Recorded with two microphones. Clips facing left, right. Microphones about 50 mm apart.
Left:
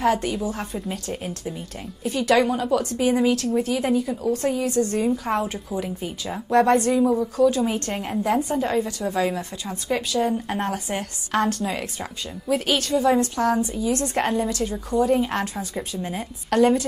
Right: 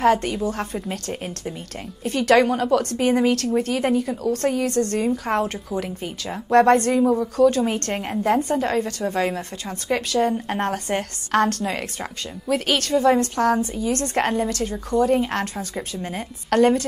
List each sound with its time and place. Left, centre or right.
0.0 s a woman's voice: right
2.0 s a woman's voice: right
9.1 s a woman's voice: right